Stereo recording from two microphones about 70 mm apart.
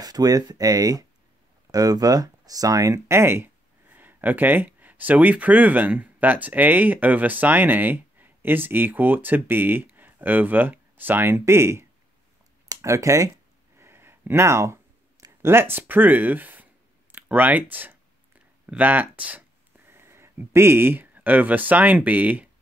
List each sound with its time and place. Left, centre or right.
0.0 s speech: right
3.4 s speech: right
13.7 s a sound: right
15.4 s speech: right
19.9 s speech: right